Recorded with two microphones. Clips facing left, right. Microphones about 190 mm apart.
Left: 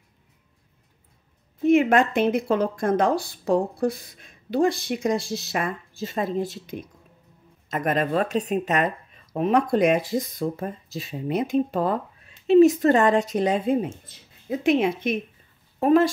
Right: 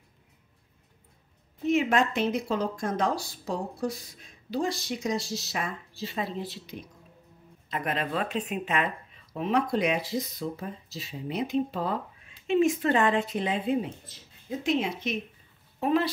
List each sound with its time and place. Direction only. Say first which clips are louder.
1.7 s speech: left 6 dB; 55° left (ahead or behind)
14.5 s speech: left 7 dB; 60° left (ahead or behind)